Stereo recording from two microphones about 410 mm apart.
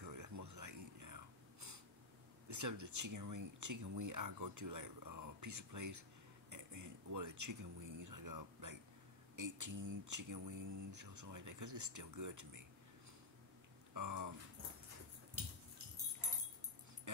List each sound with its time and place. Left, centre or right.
0.0 s whispering: right
2.4 s speech: right
13.9 s speech: right